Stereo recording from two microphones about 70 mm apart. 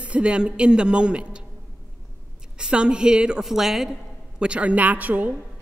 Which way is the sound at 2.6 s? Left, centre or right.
Centre.